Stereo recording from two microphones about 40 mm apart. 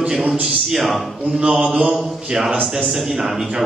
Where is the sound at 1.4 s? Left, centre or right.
Right.